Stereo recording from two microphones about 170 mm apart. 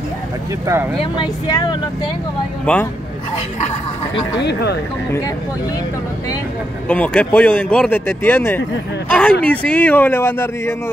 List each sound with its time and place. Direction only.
0.9 s speech: 25° left (ahead or behind)
2.6 s speech: 5° left (ahead or behind)
3.6 s speech: 30° left (ahead or behind)
4.4 s speech: 80° left
6.9 s speech: 10° left (ahead or behind)